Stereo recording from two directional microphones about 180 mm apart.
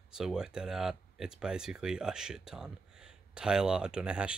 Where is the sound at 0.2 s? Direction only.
5° right (ahead or behind).